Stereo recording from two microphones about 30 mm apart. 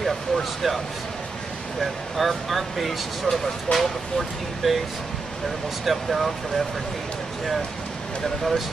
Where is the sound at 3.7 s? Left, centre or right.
Left.